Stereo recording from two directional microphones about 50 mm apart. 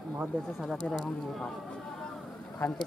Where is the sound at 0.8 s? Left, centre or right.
Left.